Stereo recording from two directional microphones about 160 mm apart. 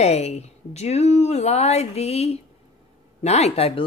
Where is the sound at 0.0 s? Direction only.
40° left (ahead or behind).